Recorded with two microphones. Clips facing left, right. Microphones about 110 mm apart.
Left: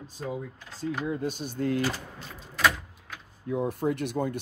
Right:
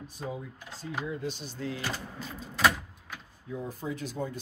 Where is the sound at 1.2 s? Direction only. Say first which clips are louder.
Left 6 dB; 50° left (ahead or behind).